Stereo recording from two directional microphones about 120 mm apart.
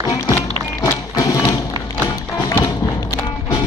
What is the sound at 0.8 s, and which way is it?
Music, 30° left (ahead or behind).